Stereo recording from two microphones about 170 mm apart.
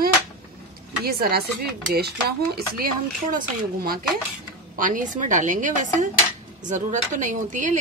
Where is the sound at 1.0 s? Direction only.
65° right (ahead or behind).